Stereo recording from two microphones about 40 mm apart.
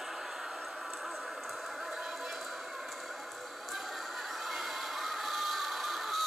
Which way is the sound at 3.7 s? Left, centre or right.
Centre.